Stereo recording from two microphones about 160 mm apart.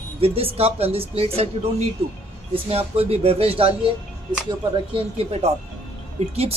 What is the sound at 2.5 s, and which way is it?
A woman's voice, 35° right (ahead or behind).